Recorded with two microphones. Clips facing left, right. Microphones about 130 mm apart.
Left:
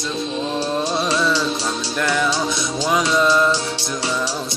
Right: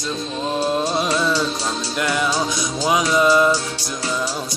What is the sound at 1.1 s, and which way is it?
Music, 5° right (ahead or behind).